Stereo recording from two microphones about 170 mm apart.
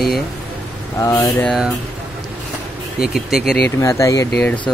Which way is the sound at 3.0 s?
Centre (ahead or behind).